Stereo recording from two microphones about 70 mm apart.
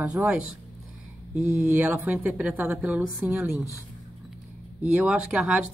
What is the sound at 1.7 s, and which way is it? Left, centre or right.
Speech, right.